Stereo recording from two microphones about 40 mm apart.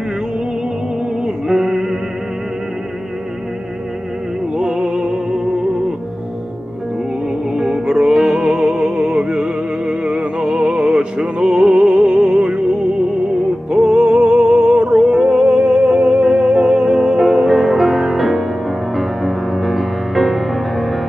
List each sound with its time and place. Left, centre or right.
1.2 s music: centre
4.6 s music: centre
7.5 s music: centre
15.0 s music: centre